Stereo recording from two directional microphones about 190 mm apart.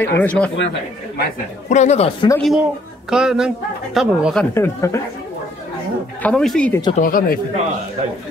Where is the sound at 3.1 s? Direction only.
5° right (ahead or behind).